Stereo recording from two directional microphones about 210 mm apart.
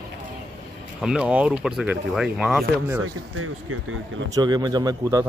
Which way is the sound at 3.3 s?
80° right.